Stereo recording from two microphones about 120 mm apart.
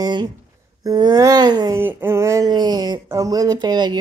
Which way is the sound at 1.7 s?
20° right (ahead or behind).